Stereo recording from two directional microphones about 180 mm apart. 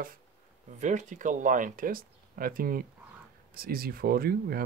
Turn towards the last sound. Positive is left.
turn(degrees=-55)  # may be behind; listen again after turning